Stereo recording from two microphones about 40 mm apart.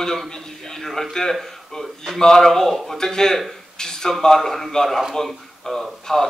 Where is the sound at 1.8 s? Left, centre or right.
Centre.